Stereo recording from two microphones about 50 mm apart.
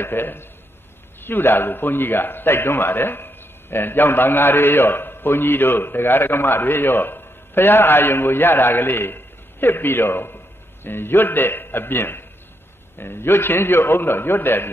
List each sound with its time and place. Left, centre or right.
0.0 s a man's voice: left